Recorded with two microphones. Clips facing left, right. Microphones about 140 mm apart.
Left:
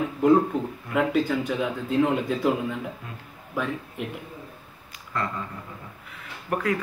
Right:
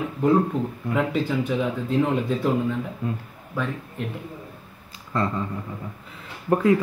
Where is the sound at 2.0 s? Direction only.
5° left (ahead or behind).